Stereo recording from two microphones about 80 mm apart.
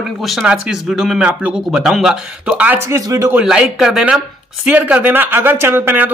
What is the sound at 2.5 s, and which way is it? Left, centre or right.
Speech, centre.